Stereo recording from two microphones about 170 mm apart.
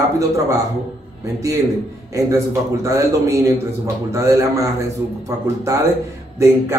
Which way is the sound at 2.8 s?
20° right (ahead or behind).